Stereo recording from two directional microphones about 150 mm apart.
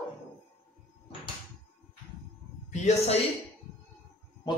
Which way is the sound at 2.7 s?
50° left (ahead or behind).